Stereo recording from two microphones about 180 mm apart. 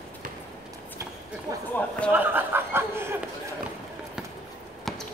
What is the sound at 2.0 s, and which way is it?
Speech, 10° right (ahead or behind).